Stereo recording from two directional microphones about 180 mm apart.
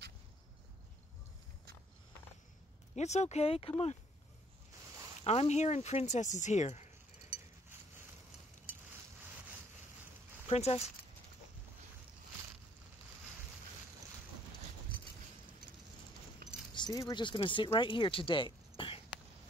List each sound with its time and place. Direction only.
3.0 s speech: 40° left (ahead or behind)
5.2 s speech: 35° left (ahead or behind)
10.5 s speech: 35° left (ahead or behind)
16.7 s speech: 20° left (ahead or behind)